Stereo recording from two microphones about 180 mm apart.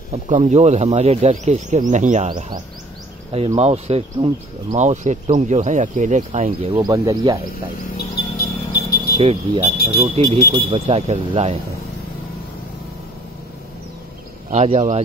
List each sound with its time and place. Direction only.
0.1 s speech: 40° right (ahead or behind)
6.7 s speech: 20° right (ahead or behind)
8.0 s vehicle: 60° left (ahead or behind)
9.1 s speech: 35° right (ahead or behind)
14.5 s speech: 40° right (ahead or behind)